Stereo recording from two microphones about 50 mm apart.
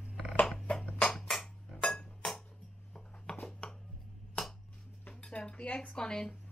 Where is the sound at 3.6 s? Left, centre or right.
Centre.